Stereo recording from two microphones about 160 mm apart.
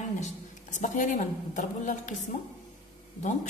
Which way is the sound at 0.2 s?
50° left (ahead or behind).